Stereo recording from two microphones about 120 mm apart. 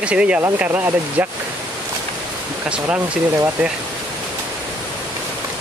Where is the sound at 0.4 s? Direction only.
20° right (ahead or behind).